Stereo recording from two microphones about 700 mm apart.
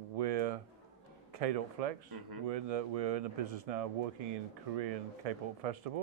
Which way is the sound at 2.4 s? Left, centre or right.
Right.